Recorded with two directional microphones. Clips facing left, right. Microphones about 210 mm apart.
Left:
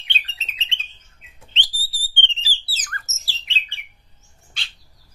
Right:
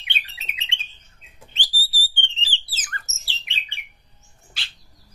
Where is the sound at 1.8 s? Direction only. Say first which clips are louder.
Right 6 dB; centre (ahead or behind).